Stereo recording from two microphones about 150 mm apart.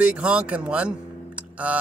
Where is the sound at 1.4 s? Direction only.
10° right (ahead or behind).